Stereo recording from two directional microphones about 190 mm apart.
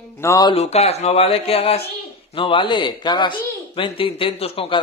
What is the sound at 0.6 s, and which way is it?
Speech, 35° left (ahead or behind).